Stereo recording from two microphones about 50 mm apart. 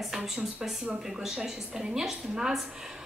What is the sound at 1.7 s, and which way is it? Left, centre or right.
Speech, centre.